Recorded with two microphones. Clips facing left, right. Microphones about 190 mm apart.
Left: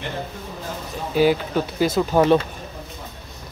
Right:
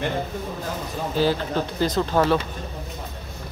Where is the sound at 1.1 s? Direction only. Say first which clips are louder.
Left 4 dB; 15° left (ahead or behind).